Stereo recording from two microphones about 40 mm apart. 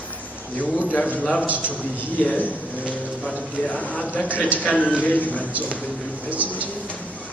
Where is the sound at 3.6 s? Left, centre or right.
Left.